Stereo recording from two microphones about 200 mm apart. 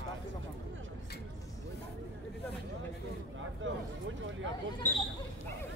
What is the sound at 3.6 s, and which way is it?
Speech, 70° right (ahead or behind).